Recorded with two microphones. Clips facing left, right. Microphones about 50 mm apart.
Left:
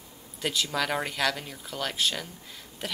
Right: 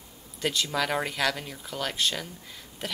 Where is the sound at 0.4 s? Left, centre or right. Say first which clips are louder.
Right 1 dB; centre.